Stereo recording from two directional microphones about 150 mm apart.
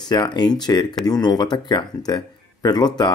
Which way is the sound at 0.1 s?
30° left (ahead or behind).